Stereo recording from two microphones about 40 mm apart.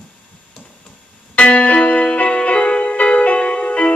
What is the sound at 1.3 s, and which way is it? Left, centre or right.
Music, left.